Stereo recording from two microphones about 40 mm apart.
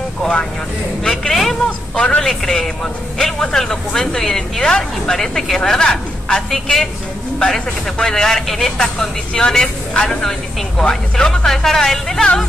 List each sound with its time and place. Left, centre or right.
0.2 s speech: left
1.3 s a sound: centre
2.0 s speech: left
2.2 s speech: centre
8.7 s speech: centre